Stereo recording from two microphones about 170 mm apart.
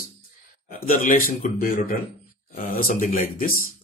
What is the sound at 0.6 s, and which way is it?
Speech, 55° left (ahead or behind).